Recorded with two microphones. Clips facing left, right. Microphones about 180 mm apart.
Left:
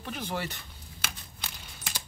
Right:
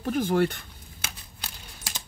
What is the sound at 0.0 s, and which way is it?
Speech, 50° right (ahead or behind).